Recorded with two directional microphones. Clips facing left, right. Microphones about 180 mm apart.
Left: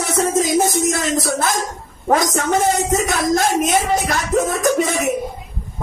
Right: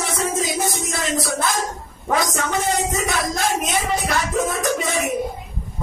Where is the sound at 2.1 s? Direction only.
45° left (ahead or behind).